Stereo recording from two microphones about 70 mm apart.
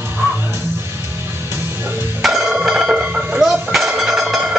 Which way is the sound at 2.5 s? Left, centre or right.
Centre.